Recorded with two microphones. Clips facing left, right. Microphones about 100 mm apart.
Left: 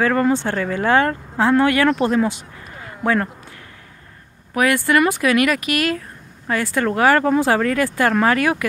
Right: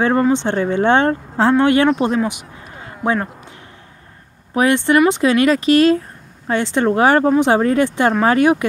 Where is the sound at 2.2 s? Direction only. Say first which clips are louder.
Even; 15° right (ahead or behind).